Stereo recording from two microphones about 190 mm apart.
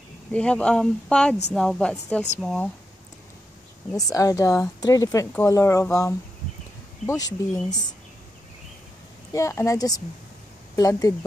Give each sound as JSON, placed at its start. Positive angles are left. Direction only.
{"t": 0.3, "sound": "speech", "side_deg": 5}
{"t": 3.9, "sound": "speech", "side_deg": 20}
{"t": 9.3, "sound": "speech", "side_deg": 15}